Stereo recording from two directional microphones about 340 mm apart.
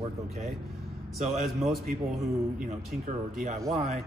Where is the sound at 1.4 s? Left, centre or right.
Centre.